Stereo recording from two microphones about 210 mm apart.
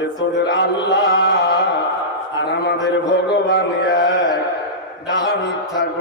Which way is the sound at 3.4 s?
55° left (ahead or behind).